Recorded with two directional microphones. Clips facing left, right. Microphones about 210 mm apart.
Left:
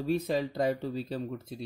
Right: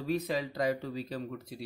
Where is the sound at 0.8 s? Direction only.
25° left (ahead or behind).